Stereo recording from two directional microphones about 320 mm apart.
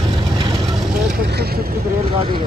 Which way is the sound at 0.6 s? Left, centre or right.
Centre.